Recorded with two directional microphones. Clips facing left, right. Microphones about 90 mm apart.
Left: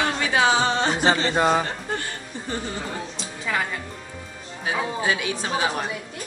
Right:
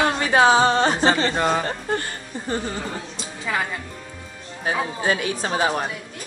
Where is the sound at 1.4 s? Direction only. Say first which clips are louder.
Left 1 dB; 15° left (ahead or behind).